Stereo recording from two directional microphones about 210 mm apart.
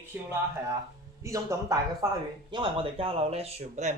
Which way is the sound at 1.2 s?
15° right (ahead or behind).